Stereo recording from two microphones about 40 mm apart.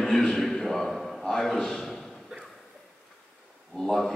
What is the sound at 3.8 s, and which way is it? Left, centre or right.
Speech, centre.